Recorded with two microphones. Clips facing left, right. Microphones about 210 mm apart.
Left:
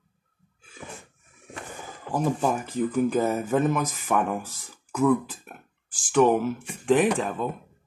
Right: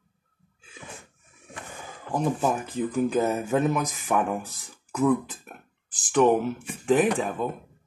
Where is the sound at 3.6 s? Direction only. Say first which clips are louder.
Left 1 dB; 10° right (ahead or behind).